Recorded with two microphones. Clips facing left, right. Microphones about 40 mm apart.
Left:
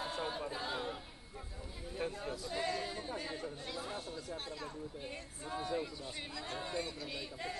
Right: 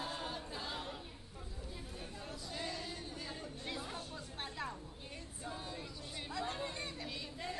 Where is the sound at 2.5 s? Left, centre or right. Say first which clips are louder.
Left 6 dB; centre.